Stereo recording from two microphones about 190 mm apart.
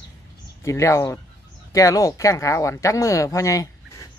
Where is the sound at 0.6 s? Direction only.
15° left (ahead or behind).